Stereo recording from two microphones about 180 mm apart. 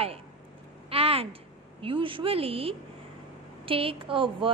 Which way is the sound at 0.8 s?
30° right (ahead or behind).